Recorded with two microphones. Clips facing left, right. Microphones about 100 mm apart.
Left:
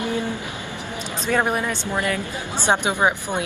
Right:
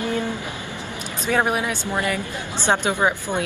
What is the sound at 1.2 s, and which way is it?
Speech, 10° right (ahead or behind).